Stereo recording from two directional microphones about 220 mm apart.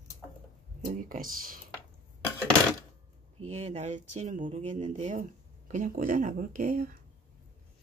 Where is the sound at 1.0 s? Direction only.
40° right (ahead or behind).